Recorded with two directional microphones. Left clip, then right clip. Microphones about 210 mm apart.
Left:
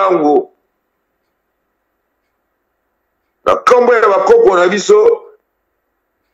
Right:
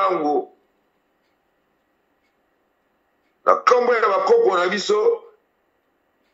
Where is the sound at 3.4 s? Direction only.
40° left (ahead or behind).